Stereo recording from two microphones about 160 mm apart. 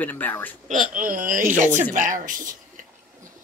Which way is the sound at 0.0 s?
10° left (ahead or behind).